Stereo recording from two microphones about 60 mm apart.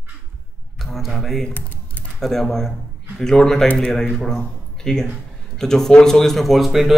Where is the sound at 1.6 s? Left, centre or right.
Left.